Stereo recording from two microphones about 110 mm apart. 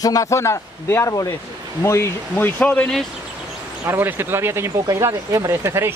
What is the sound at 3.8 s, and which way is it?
Speech, 20° right (ahead or behind).